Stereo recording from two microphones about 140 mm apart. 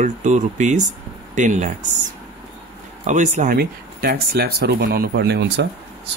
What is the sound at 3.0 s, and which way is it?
Speech, 60° right (ahead or behind).